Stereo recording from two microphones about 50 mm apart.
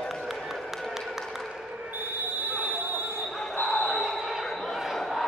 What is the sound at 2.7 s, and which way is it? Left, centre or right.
Train, right.